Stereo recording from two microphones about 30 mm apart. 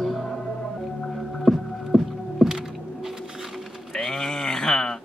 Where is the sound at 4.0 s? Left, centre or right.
Left.